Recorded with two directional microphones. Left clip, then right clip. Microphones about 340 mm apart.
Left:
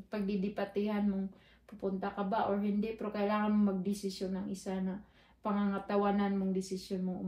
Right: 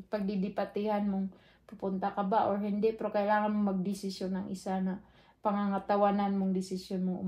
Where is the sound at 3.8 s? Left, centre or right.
Centre.